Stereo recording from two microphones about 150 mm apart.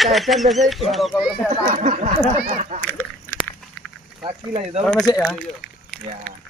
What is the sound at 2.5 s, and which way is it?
Duck, 50° right (ahead or behind).